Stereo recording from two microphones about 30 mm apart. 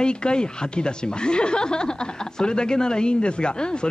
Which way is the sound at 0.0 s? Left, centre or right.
Left.